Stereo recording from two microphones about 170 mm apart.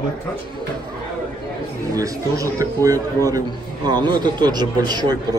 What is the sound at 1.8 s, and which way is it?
A man's voice, 20° right (ahead or behind).